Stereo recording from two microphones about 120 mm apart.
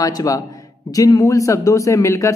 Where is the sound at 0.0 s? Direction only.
30° left (ahead or behind).